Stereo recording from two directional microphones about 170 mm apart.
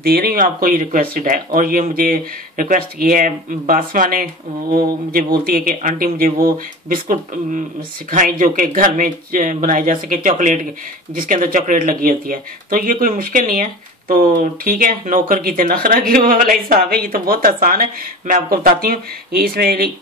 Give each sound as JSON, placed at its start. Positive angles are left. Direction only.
{"t": 0.0, "sound": "speech", "side_deg": -65}